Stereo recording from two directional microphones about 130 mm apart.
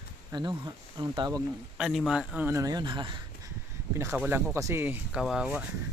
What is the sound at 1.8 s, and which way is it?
Speech, 5° right (ahead or behind).